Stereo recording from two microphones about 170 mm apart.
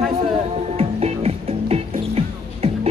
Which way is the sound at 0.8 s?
35° right (ahead or behind).